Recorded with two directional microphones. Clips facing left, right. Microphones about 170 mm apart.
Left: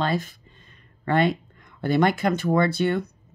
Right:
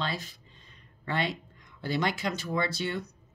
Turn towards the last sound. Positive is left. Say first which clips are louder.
# left 9 dB
turn(degrees=55)  # may be behind; listen again after turning